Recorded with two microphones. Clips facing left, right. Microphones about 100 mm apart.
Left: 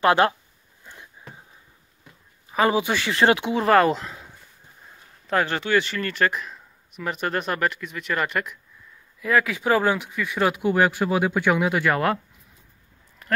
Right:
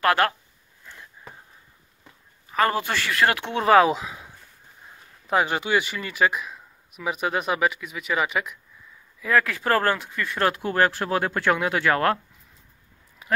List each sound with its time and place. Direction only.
0.0 s speech: 20° left (ahead or behind)
0.8 s a sound: 20° left (ahead or behind)
2.5 s speech: 15° left (ahead or behind)
3.4 s speech: centre (ahead or behind)